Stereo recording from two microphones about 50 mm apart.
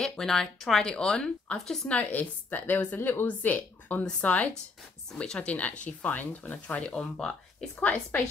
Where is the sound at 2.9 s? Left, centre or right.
Left.